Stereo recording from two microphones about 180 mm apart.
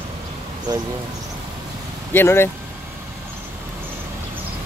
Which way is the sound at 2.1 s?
15° left (ahead or behind).